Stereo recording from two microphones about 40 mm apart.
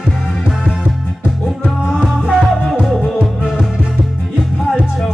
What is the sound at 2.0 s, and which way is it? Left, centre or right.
Music, right.